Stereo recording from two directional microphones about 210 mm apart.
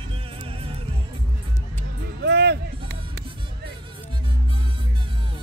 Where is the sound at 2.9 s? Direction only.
55° right (ahead or behind).